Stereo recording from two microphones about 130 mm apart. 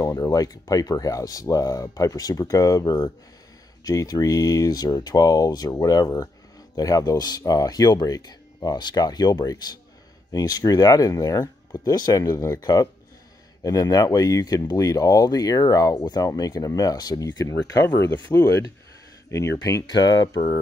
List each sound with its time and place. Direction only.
0.0 s speech: 25° left (ahead or behind)
17.8 s speech: 15° left (ahead or behind)
19.3 s speech: 25° left (ahead or behind)